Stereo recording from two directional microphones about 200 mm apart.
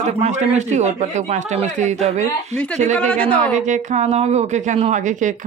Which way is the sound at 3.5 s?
35° right (ahead or behind).